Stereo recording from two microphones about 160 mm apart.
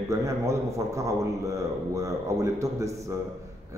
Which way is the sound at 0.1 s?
20° right (ahead or behind).